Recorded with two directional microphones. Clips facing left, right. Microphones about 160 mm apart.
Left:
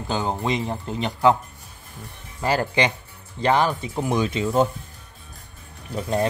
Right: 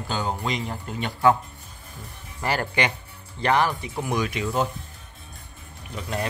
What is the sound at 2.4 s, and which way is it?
Speech, 20° left (ahead or behind).